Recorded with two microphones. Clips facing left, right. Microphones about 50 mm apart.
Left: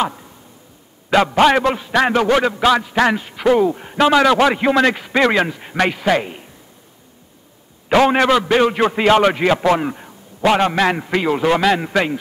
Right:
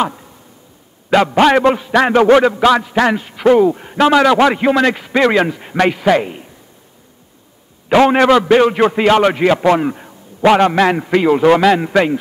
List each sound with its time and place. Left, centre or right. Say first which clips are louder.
1.4 s a man's voice: right 4 dB; centre
2.2 s a man's voice: right 6 dB; right
2.6 s a man's voice: right 3 dB; centre
3.4 s a man's voice: right 4 dB; centre
7.9 s a man's voice: right 3 dB; centre
10.4 s a man's voice: right 4 dB; centre